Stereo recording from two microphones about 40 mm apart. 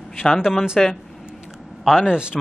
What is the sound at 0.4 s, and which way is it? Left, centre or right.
Speech, centre.